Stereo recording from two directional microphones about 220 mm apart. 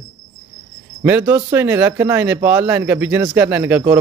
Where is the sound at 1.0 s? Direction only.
10° right (ahead or behind).